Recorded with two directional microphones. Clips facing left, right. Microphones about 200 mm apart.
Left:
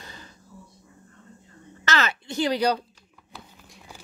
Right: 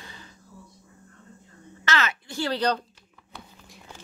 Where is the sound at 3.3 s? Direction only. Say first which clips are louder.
Right 1 dB; centre (ahead or behind).